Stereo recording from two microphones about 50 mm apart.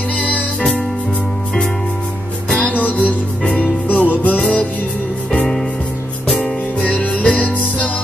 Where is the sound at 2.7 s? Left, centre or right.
Left.